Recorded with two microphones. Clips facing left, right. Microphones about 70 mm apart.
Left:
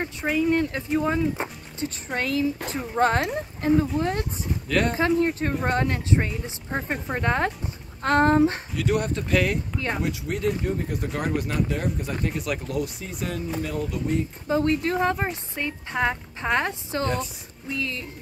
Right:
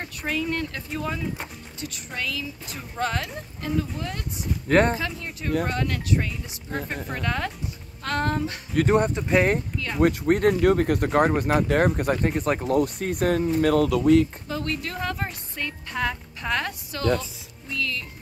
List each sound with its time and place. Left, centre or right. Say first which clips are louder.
0.0 s a woman's voice: left 4 dB; centre
2.0 s speech: left 8 dB; left
4.6 s speech: right 5 dB; right
5.1 s a woman's voice: left 5 dB; left
8.9 s speech: right 2 dB; right
10.0 s speech: right 12 dB; right
10.6 s speech: right 8 dB; right
14.5 s a woman's voice: left 7 dB; left